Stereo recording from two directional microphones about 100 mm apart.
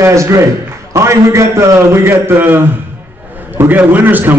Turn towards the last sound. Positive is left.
turn(degrees=-20)  # may be behind; listen again after turning